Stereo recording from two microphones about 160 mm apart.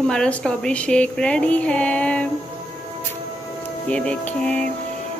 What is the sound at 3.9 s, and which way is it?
Speech, 5° left (ahead or behind).